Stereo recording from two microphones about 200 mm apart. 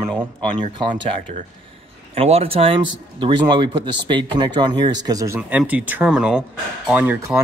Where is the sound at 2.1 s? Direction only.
30° right (ahead or behind).